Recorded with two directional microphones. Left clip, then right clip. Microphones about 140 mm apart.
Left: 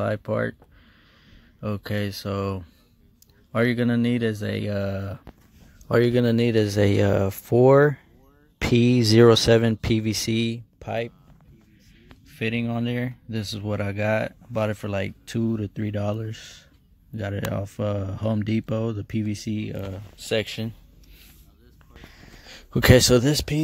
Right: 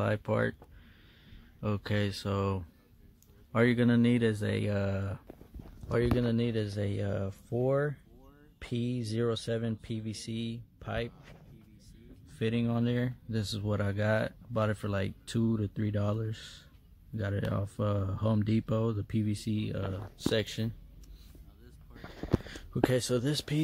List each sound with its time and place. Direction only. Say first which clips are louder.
0.0 s speech: left 5 dB; 20° left (ahead or behind)
1.6 s speech: left 4 dB; 20° left (ahead or behind)
6.1 s speech: left 11 dB; 75° left (ahead or behind)
10.8 s speech: left 8 dB; 35° left (ahead or behind)
12.4 s speech: left 5 dB; 10° left (ahead or behind)
22.7 s speech: left 13 dB; 90° left; by 23.6 s 50° left (ahead or behind)